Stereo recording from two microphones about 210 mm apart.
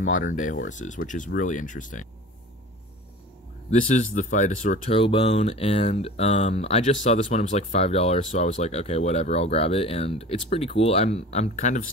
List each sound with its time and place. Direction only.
0.0 s speech: 40° left (ahead or behind)
3.8 s speech: 40° left (ahead or behind)